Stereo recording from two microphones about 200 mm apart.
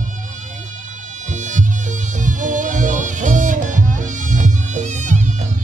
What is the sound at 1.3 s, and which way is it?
Music, 40° right (ahead or behind).